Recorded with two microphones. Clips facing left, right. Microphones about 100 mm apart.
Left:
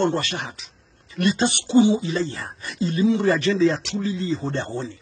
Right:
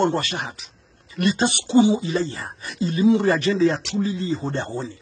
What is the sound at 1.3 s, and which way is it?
Speech, 50° right (ahead or behind).